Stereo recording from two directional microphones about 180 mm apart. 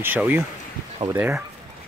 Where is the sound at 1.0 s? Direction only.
35° right (ahead or behind).